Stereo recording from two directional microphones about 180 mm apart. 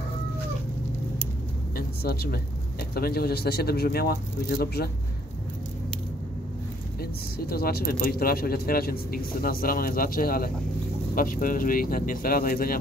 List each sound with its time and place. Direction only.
1.8 s a woman's voice: 60° left (ahead or behind)
7.0 s speech: 60° left (ahead or behind)